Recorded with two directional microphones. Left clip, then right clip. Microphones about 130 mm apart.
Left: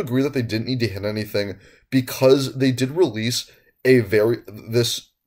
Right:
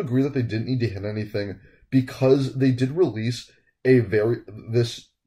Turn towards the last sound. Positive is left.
turn(degrees=25)  # may be behind; listen again after turning